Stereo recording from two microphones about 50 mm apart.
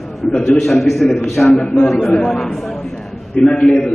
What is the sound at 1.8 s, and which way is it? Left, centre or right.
Speech, centre.